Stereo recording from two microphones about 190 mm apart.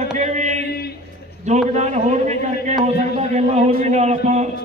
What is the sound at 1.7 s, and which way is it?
A man's voice, 35° right (ahead or behind).